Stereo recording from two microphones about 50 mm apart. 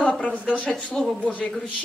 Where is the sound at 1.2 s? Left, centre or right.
Left.